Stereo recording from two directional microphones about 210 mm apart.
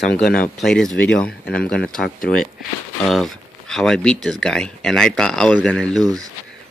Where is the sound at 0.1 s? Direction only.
50° left (ahead or behind).